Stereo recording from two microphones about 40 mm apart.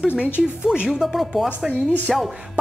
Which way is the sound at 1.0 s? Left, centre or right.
Centre.